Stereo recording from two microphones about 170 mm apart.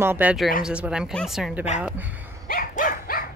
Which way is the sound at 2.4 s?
55° left (ahead or behind).